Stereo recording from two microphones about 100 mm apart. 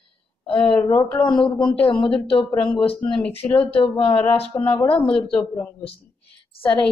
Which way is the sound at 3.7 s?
70° left (ahead or behind).